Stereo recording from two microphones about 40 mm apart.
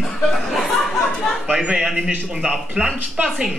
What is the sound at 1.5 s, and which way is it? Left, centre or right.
Speech, centre.